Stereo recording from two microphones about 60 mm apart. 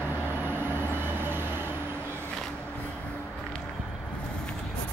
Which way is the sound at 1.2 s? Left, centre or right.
Right.